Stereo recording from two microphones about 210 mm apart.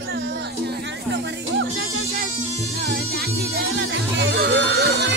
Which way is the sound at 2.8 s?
50° right (ahead or behind).